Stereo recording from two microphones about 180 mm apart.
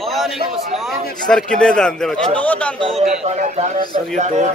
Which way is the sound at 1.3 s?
5° left (ahead or behind).